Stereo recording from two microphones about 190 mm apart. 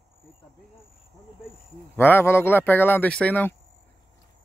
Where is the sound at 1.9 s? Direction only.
10° left (ahead or behind).